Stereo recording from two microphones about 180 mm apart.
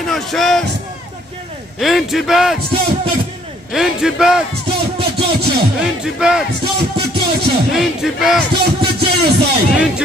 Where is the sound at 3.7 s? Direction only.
Centre (ahead or behind).